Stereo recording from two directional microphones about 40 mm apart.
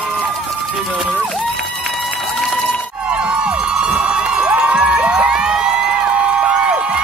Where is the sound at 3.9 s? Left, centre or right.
Right.